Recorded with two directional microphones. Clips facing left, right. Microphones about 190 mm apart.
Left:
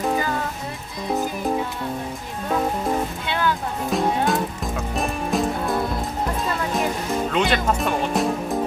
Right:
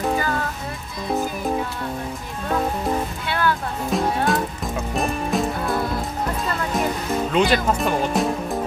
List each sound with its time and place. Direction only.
3.3 s music: 15° left (ahead or behind)
3.9 s music: centre (ahead or behind)
6.7 s music: centre (ahead or behind)